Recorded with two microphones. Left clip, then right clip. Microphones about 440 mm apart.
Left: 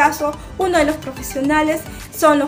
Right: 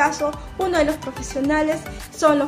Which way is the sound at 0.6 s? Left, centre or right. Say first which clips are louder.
Left 4 dB; right.